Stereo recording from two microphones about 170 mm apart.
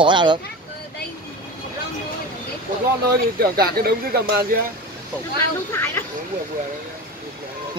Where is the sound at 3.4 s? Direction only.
65° right (ahead or behind).